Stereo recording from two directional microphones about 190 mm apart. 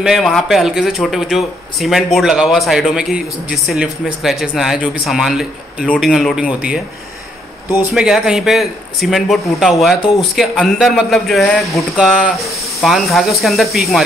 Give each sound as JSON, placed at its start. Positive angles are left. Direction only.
{"t": 0.0, "sound": "speech", "side_deg": 0}
{"t": 7.9, "sound": "speech", "side_deg": -5}
{"t": 9.9, "sound": "speech", "side_deg": 25}
{"t": 10.3, "sound": "speech", "side_deg": 0}